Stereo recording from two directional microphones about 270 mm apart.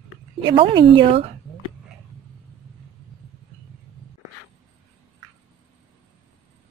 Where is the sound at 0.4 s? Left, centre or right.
Centre.